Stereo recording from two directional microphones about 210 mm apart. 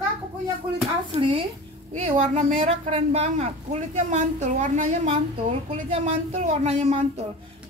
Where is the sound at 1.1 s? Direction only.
25° right (ahead or behind).